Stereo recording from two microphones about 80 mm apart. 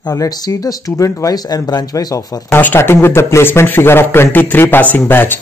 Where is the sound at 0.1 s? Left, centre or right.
Left.